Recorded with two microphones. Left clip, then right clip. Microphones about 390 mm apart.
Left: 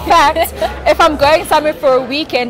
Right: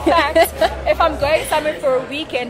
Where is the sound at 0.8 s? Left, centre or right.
Left.